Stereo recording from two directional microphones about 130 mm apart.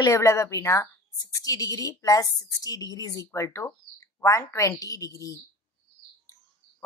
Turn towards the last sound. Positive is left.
turn(degrees=25)  # may be behind; listen again after turning